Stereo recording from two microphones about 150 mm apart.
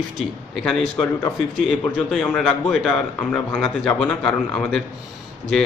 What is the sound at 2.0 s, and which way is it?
A man's voice, 5° left (ahead or behind).